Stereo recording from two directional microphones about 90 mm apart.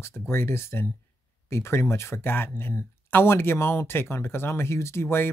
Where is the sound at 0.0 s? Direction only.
25° left (ahead or behind).